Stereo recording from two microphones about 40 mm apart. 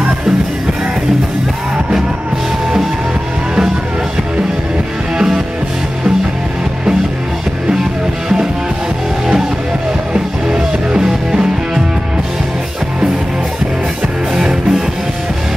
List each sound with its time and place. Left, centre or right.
5.1 s music: centre
10.1 s music: right
14.3 s music: centre